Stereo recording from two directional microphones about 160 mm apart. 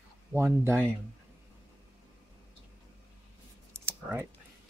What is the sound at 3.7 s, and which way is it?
Computer keyboard, 15° right (ahead or behind).